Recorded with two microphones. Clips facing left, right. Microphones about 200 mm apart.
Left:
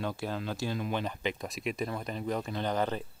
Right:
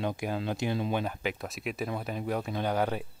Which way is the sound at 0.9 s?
5° right (ahead or behind).